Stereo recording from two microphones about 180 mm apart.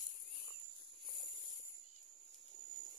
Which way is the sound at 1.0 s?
25° right (ahead or behind).